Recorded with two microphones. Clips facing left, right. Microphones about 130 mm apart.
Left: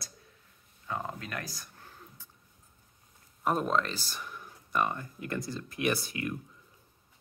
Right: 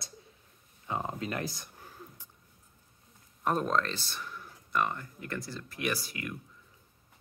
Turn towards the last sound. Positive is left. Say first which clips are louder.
# left 4 dB
turn(degrees=25)  # may be behind; listen again after turning